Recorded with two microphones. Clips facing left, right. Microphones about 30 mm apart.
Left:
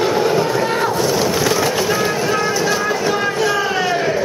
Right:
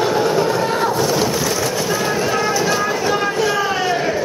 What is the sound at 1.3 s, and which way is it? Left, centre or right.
Vehicle, left.